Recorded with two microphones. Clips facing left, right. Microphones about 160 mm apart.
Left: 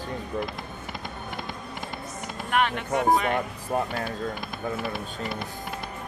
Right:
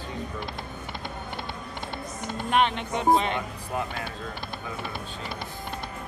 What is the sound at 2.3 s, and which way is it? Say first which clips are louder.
Speech: right 2 dB; 20° right (ahead or behind).